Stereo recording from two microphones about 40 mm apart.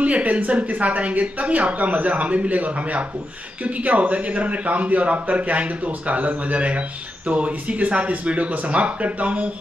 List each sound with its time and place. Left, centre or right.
0.0 s speech: right